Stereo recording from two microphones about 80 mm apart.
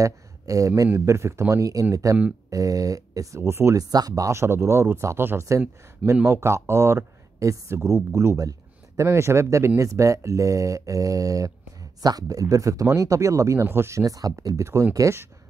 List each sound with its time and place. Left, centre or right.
0.0 s speech: right
3.7 s speech: right